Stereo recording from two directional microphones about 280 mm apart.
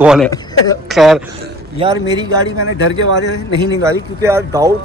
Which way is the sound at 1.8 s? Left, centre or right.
Centre.